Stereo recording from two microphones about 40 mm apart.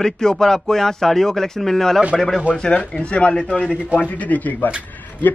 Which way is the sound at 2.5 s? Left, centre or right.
Left.